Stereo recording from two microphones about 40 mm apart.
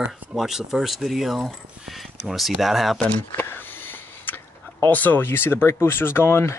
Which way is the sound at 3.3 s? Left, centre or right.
Left.